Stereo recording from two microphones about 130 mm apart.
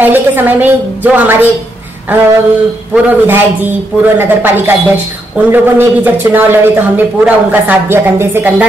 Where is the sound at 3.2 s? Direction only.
15° right (ahead or behind).